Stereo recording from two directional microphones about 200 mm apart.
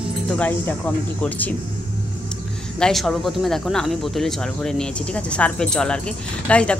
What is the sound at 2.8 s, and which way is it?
Speech, centre (ahead or behind).